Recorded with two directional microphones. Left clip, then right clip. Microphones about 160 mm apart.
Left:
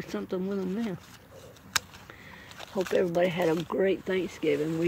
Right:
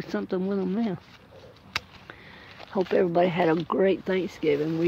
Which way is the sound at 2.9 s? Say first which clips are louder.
Right 3 dB; 30° right (ahead or behind).